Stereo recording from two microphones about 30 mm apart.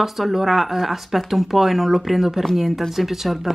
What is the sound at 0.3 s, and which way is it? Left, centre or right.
A woman's voice, centre.